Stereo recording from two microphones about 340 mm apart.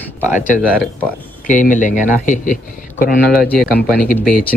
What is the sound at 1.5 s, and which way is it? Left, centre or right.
A man's voice, left.